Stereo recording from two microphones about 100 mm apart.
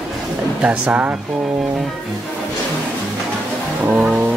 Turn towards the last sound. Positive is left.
turn(degrees=-20)  # may be behind; listen again after turning